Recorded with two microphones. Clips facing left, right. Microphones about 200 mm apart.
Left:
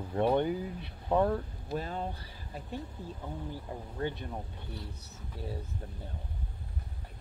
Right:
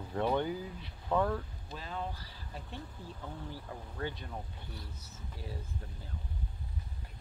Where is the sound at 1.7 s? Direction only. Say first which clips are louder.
Left 4 dB; 45° left (ahead or behind).